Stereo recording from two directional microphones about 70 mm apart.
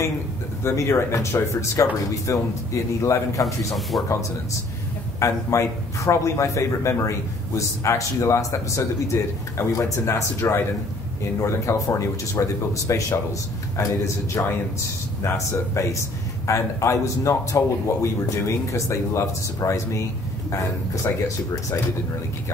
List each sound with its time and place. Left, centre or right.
0.7 s a man's voice: left
5.2 s a man's voice: left